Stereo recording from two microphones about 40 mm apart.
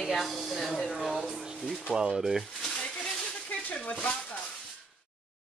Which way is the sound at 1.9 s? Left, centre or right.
Right.